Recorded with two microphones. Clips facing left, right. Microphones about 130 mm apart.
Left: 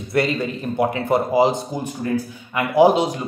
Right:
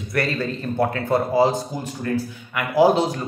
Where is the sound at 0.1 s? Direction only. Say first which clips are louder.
Left 3 dB; 20° left (ahead or behind).